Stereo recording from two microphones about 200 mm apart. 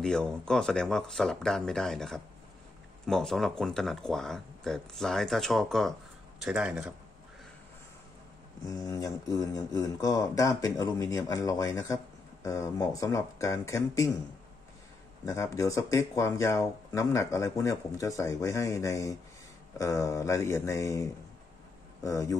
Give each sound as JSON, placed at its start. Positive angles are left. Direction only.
{"t": 0.0, "sound": "speech", "side_deg": 5}
{"t": 8.6, "sound": "speech", "side_deg": 15}
{"t": 15.2, "sound": "speech", "side_deg": 15}